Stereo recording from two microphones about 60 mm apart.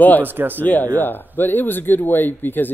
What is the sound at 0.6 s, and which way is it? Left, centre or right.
Speech, left.